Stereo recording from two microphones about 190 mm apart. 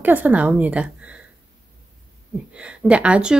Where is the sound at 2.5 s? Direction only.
5° right (ahead or behind).